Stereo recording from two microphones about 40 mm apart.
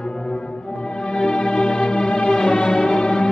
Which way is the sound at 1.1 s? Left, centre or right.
Centre.